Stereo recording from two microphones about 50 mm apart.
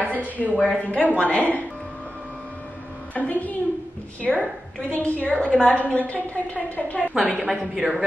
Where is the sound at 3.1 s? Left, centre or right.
Left.